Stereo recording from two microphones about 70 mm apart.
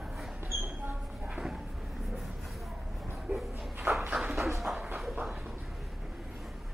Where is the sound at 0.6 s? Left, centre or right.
Centre.